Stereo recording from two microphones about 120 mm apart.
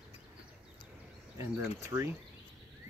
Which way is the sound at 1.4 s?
25° right (ahead or behind).